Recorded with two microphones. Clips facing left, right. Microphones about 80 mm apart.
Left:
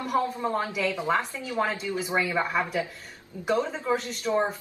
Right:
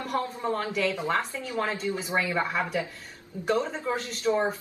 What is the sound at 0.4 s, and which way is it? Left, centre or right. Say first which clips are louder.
A woman's voice: even; centre.